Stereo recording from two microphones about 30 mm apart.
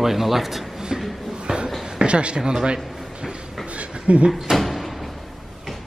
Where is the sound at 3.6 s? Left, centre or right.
Right.